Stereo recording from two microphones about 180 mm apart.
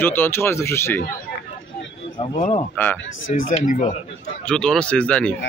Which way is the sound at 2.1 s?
30° left (ahead or behind).